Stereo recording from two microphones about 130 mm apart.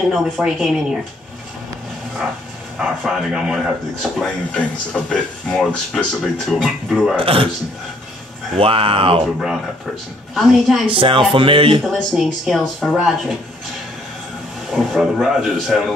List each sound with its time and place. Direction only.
0.1 s speech: 5° right (ahead or behind)
2.8 s speech: 10° right (ahead or behind)
7.2 s speech: 45° right (ahead or behind)
8.5 s speech: 45° right (ahead or behind)
10.3 s speech: centre (ahead or behind)
10.9 s speech: 40° right (ahead or behind)
11.9 s speech: centre (ahead or behind)
14.7 s speech: centre (ahead or behind)